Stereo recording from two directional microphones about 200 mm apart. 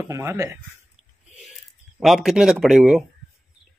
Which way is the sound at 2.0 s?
Centre (ahead or behind).